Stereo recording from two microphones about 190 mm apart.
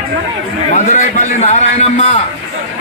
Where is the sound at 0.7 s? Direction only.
40° left (ahead or behind).